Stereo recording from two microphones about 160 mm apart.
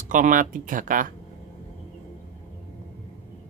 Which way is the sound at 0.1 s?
55° right (ahead or behind).